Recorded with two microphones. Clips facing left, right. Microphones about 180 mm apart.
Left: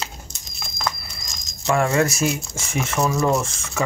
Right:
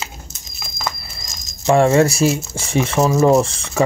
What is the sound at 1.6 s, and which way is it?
Speech, 25° right (ahead or behind).